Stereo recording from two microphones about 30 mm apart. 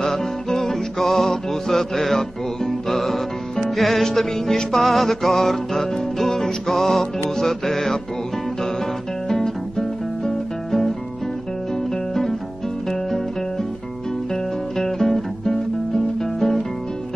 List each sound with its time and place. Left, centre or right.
0.0 s music: centre
9.3 s music: centre
12.1 s music: centre
14.3 s music: centre